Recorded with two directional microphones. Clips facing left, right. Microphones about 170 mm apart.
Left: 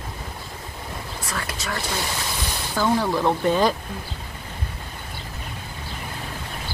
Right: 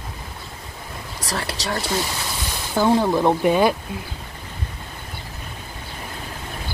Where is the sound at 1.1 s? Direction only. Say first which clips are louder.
Right 5 dB; 35° right (ahead or behind).